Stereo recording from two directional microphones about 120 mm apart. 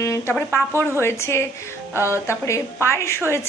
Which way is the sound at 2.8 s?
25° left (ahead or behind).